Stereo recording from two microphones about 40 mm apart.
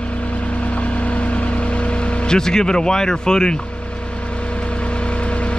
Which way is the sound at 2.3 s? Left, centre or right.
Centre.